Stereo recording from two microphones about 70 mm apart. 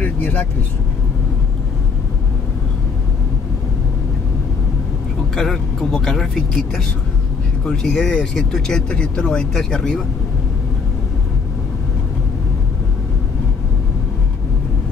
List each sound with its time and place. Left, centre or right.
0.0 s vehicle: left
5.3 s speech: centre